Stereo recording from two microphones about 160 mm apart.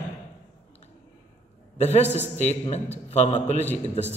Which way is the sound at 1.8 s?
45° left (ahead or behind).